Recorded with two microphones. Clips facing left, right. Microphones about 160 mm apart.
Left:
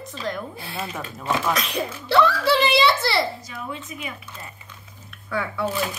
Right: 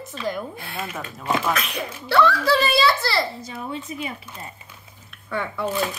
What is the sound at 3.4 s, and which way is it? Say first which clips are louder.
Speech: right 3 dB; 30° right (ahead or behind).